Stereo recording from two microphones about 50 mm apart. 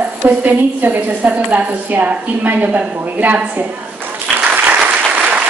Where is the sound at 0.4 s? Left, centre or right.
Right.